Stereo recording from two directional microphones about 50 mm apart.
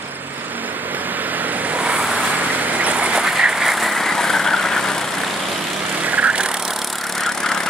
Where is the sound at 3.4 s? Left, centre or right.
Centre.